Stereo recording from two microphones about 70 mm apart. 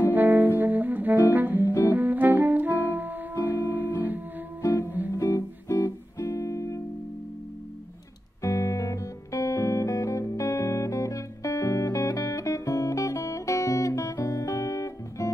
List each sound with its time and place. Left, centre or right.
0.1 s music: right
4.6 s music: left
8.4 s music: left